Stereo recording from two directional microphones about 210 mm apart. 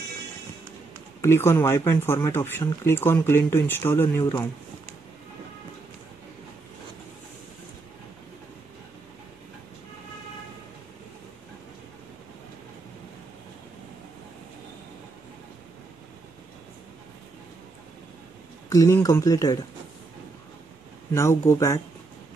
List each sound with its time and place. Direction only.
1.2 s speech: 10° left (ahead or behind)
18.7 s speech: 15° left (ahead or behind)
21.1 s speech: 15° left (ahead or behind)